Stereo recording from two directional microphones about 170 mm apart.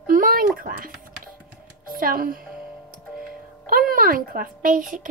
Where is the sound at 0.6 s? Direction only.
55° right (ahead or behind).